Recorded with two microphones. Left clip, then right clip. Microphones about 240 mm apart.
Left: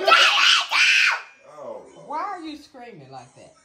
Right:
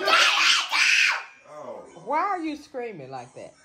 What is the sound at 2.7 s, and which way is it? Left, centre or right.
Speech, right.